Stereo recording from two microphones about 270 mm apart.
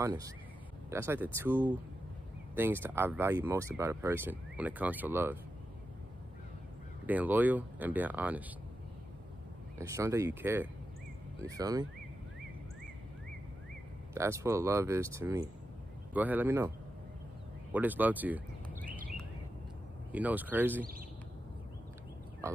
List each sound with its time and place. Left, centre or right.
0.0 s speech: centre
7.1 s speech: centre
9.8 s speech: centre
14.1 s speech: centre
17.7 s speech: centre
20.1 s speech: centre